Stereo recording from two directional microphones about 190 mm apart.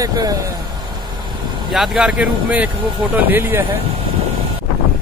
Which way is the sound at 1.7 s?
Centre (ahead or behind).